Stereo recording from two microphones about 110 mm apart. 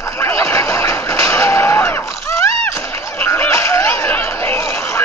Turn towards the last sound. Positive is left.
turn(degrees=20)  # may be behind; listen again after turning